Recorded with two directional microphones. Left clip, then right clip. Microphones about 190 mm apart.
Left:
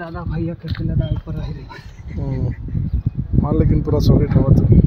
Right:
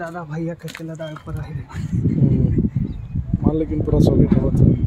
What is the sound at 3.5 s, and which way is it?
Speech, centre (ahead or behind).